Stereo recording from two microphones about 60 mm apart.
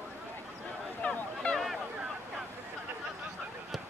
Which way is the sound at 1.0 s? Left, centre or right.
Centre.